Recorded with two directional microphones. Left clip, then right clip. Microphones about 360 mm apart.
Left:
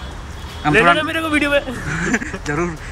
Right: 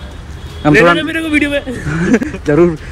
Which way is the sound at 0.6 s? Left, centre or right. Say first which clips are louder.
Right 4 dB; centre.